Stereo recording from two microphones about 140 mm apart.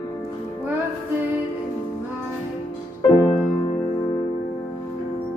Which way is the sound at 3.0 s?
35° left (ahead or behind).